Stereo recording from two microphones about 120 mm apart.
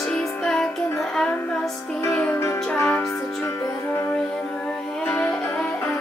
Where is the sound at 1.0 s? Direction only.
5° left (ahead or behind).